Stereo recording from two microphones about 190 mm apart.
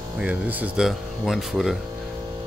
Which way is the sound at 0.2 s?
10° right (ahead or behind).